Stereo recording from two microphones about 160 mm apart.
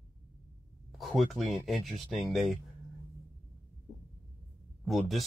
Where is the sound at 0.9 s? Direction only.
Centre (ahead or behind).